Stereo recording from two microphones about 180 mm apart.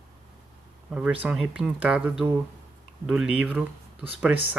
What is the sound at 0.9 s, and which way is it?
Speech, 5° right (ahead or behind).